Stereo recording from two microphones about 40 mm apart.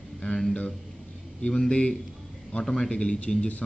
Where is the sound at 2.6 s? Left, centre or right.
Centre.